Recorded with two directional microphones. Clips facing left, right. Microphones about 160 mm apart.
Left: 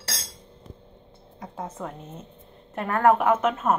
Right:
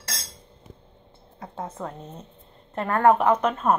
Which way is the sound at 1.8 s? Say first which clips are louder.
Right 1 dB; 5° left (ahead or behind).